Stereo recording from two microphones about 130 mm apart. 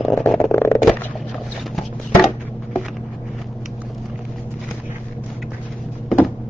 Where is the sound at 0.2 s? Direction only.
Centre (ahead or behind).